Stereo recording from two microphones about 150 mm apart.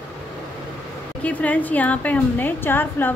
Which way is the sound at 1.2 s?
10° left (ahead or behind).